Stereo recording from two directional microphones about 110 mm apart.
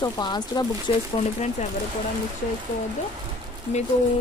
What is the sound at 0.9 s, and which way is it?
Speech, 55° left (ahead or behind).